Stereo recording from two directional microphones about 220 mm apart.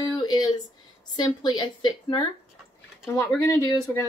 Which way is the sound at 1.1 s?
20° left (ahead or behind).